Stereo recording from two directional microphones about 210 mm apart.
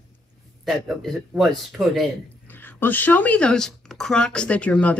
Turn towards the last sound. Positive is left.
turn(degrees=5)  # may be behind; listen again after turning